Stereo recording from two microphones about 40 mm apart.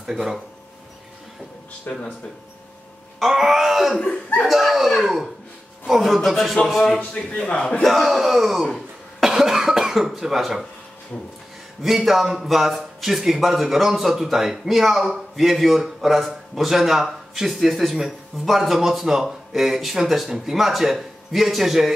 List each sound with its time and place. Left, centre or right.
0.0 s speech: centre
1.9 s speech: left
3.2 s throat clearing: centre
4.5 s a man's voice: centre
11.8 s a man's voice: centre